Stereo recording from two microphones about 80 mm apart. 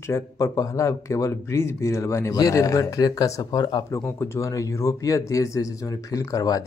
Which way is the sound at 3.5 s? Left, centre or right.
Left.